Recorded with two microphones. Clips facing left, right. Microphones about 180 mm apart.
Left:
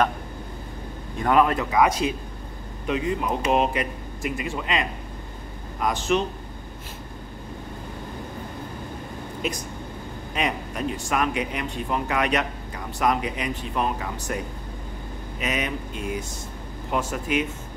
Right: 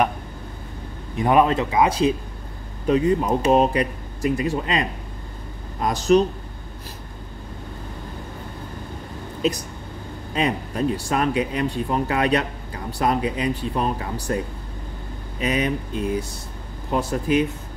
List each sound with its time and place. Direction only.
1.1 s speech: 20° right (ahead or behind); by 6.2 s 35° right (ahead or behind)
9.4 s speech: 35° right (ahead or behind)